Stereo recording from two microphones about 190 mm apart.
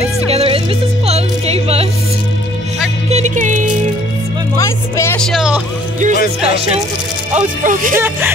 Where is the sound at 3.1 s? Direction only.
40° right (ahead or behind).